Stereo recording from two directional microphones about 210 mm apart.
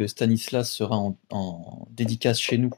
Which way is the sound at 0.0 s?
40° left (ahead or behind).